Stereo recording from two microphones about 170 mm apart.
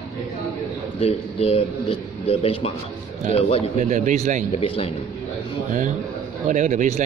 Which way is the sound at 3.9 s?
45° right (ahead or behind).